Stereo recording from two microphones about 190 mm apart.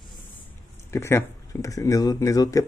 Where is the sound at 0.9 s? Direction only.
15° left (ahead or behind).